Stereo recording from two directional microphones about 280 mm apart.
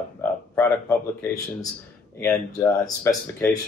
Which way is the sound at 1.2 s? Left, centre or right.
Centre.